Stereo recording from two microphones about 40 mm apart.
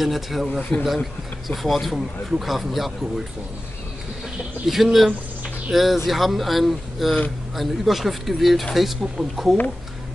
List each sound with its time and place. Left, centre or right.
0.0 s speech: centre
0.5 s speech: left
1.5 s speech: centre
4.6 s speech: centre